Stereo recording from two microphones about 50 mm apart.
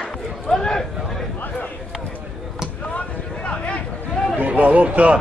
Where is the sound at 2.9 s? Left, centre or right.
Left.